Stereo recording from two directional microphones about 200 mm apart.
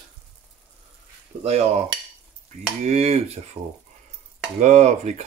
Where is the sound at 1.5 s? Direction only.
30° right (ahead or behind).